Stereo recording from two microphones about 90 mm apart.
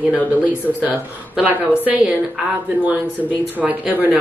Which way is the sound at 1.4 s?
15° right (ahead or behind).